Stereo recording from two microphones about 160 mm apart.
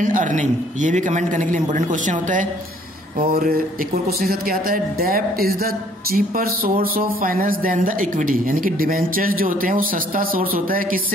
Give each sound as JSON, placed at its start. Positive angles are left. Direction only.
{"t": 0.0, "sound": "a man's voice", "side_deg": -55}
{"t": 3.2, "sound": "speech", "side_deg": -65}